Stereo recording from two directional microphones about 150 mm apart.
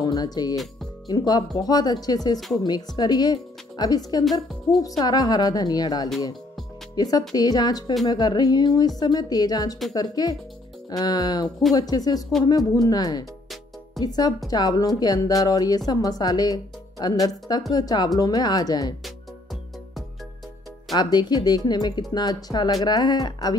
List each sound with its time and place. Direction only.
0.0 s speech: 25° left (ahead or behind)
4.2 s a woman's voice: centre (ahead or behind)
4.8 s speech: 25° left (ahead or behind)
20.9 s speech: 30° left (ahead or behind)